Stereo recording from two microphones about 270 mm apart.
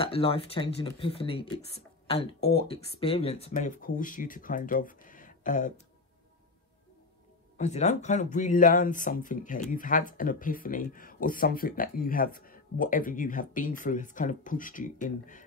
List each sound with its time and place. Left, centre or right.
0.0 s speech: left
7.5 s speech: left